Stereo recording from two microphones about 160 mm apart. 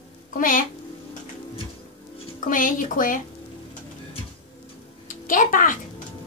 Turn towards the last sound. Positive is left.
turn(degrees=55)  # may be behind; listen again after turning